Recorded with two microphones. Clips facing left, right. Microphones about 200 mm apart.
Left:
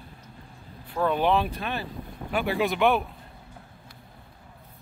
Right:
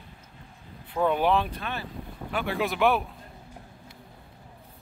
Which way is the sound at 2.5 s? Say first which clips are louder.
Left 1 dB; centre (ahead or behind).